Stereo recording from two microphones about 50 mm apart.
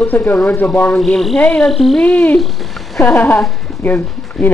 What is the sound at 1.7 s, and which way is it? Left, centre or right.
Speech, centre.